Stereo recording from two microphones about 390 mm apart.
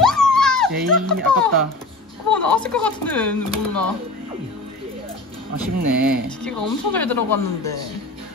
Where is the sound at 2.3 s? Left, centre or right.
Centre.